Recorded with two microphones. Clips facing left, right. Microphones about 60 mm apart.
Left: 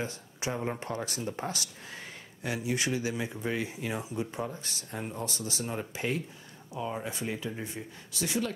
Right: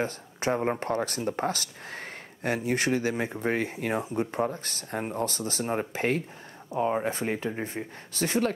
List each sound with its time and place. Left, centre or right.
0.0 s speech: right